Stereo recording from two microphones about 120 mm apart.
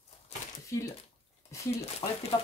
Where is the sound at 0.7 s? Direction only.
25° left (ahead or behind).